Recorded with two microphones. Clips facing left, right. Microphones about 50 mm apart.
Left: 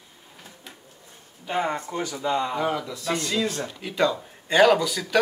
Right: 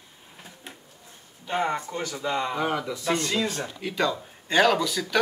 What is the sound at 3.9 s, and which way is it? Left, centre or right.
Speech, centre.